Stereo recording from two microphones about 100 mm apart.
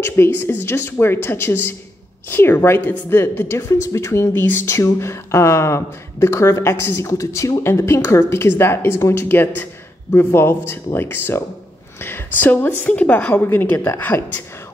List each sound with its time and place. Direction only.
0.0 s a woman's voice: 25° left (ahead or behind)